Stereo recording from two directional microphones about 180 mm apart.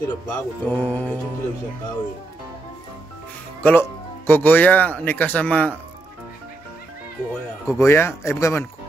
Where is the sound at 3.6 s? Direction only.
10° left (ahead or behind).